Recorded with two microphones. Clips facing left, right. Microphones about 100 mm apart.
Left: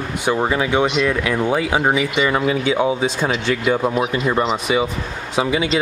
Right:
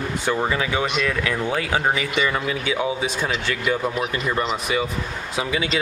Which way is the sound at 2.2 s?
25° left (ahead or behind).